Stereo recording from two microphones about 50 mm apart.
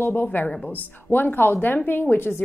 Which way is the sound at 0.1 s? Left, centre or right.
Left.